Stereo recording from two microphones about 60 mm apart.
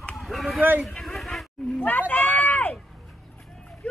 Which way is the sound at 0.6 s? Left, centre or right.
Right.